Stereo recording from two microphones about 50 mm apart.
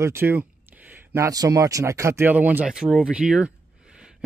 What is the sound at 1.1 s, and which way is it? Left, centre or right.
Speech, right.